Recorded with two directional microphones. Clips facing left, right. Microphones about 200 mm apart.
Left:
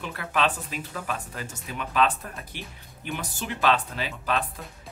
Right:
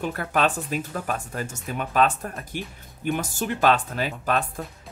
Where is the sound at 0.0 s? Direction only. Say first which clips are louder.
Right 3 dB; 45° right (ahead or behind).